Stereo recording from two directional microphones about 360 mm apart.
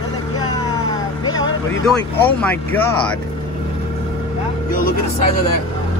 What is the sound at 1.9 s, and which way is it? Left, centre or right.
Speech, centre.